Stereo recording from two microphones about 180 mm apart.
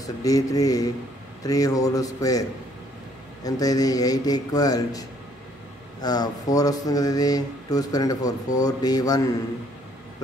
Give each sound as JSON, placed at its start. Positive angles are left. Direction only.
{"t": 0.0, "sound": "speech", "side_deg": 20}
{"t": 3.4, "sound": "speech", "side_deg": 20}